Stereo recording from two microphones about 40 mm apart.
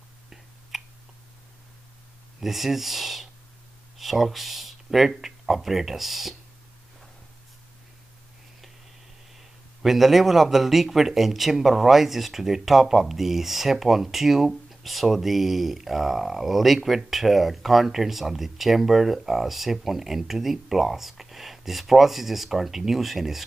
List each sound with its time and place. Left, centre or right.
0.3 s a sound: centre
2.4 s a man's voice: centre
9.4 s a man's voice: centre